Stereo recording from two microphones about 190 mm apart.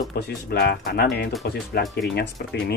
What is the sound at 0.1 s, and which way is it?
Speech, 60° left (ahead or behind).